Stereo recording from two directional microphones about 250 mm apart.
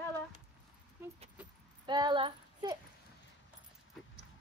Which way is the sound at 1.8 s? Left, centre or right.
Centre.